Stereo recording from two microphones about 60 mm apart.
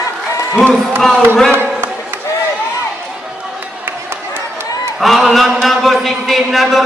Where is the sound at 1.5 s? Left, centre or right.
Right.